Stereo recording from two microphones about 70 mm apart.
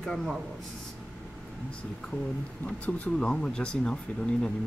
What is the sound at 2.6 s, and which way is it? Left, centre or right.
Speech, centre.